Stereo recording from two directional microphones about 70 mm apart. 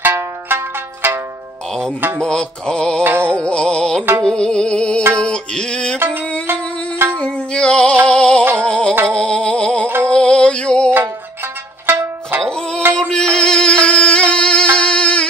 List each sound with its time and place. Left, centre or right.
0.0 s music: right
2.0 s a sound: right
2.2 s music: centre
3.0 s a sound: right
3.4 s music: centre
7.0 s music: right
7.3 s music: centre
10.0 s a sound: centre
11.8 s music: right
12.4 s music: centre